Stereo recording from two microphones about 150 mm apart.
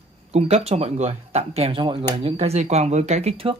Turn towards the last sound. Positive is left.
turn(degrees=-40)  # may be behind; listen again after turning